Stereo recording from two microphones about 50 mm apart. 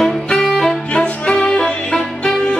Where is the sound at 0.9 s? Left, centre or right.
Left.